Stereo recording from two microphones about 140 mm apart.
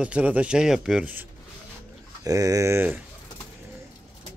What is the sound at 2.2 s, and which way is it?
Speech, 25° right (ahead or behind).